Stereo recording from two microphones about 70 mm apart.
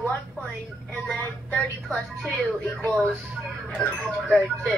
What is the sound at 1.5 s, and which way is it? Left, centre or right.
Music, centre.